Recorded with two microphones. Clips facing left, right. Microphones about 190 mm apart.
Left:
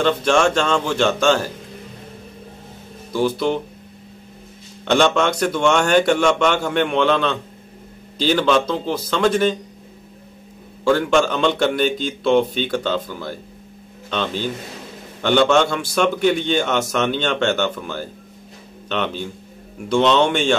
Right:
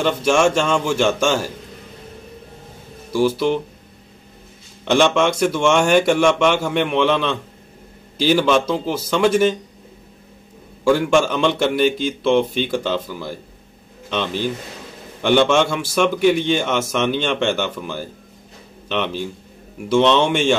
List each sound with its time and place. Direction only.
0.0 s a man's voice: 10° right (ahead or behind)
3.1 s a man's voice: 10° right (ahead or behind)
4.8 s a man's voice: 5° right (ahead or behind)
10.8 s a man's voice: 10° right (ahead or behind)